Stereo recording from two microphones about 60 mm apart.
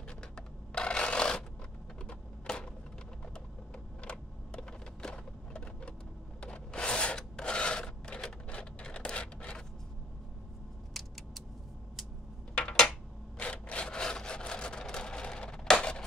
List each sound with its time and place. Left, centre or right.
0.7 s filing: centre
2.0 s typewriter: centre
4.0 s a sound: centre
6.4 s filing: centre
10.9 s keys jangling: centre
12.5 s a sound: centre